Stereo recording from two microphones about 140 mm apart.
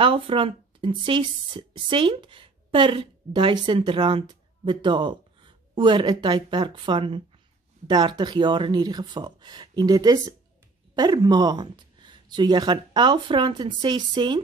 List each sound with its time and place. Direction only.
0.0 s speech: 40° right (ahead or behind)